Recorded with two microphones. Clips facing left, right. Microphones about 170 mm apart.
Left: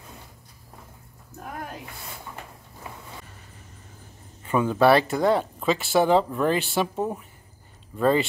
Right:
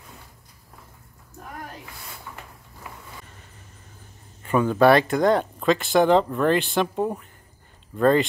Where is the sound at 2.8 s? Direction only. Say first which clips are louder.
Left 1 dB; 30° left (ahead or behind).